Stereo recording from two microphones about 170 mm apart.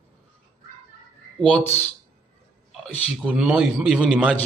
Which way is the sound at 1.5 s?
10° left (ahead or behind).